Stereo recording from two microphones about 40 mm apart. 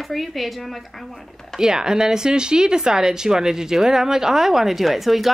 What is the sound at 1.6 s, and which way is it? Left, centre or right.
Speech, centre.